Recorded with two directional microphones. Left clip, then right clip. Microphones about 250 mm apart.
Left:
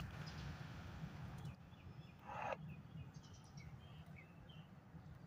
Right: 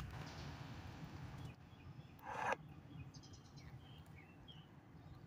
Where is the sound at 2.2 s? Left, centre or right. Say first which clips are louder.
Right 4 dB; right.